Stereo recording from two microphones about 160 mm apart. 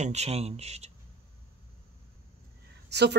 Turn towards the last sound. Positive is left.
turn(degrees=-90)